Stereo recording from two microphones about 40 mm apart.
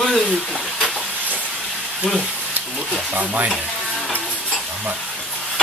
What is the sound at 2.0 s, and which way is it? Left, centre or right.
Speech, centre.